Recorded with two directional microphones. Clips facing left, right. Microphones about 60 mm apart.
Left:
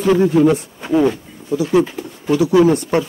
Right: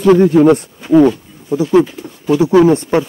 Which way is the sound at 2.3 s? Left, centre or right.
Right.